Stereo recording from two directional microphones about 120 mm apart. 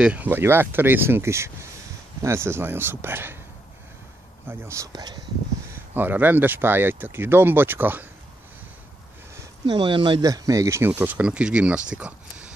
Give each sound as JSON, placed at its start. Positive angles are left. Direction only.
{"t": 0.0, "sound": "speech", "side_deg": -15}
{"t": 4.5, "sound": "speech", "side_deg": -25}
{"t": 5.9, "sound": "speech", "side_deg": -15}
{"t": 9.7, "sound": "speech", "side_deg": -45}
{"t": 10.2, "sound": "speech", "side_deg": -30}
{"t": 10.9, "sound": "speech", "side_deg": -15}